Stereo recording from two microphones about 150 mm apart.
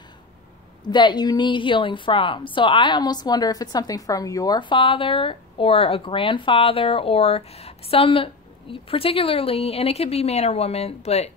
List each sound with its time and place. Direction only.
0.8 s a woman's voice: 30° left (ahead or behind); by 11.3 s 45° left (ahead or behind)